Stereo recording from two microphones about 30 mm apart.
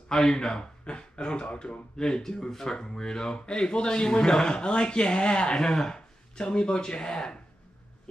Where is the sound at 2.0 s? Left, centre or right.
Centre.